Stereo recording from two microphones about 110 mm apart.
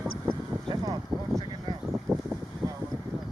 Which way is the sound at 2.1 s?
15° right (ahead or behind).